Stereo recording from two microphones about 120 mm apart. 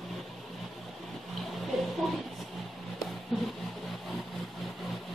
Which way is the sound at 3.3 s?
Centre (ahead or behind).